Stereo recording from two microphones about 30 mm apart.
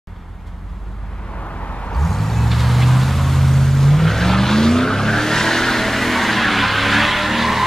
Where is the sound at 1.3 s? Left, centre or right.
Left.